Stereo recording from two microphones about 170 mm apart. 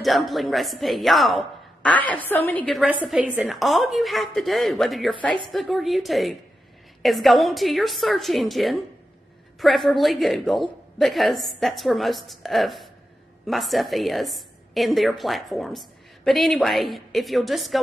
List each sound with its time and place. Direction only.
0.0 s a woman's voice: centre (ahead or behind)